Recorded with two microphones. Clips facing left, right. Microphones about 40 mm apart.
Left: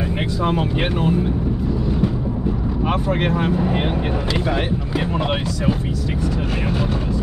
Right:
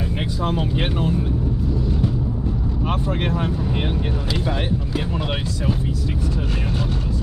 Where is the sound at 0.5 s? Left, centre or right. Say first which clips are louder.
Left 2 dB; left.